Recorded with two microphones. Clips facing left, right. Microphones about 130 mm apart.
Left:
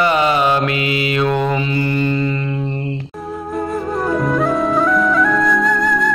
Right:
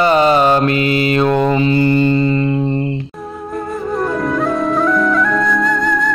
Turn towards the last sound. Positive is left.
turn(degrees=0)  # may be behind; listen again after turning